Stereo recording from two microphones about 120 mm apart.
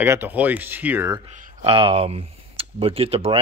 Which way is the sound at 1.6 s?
50° right (ahead or behind).